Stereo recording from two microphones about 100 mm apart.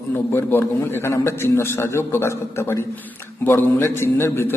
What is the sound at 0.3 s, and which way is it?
A man's voice, 25° left (ahead or behind).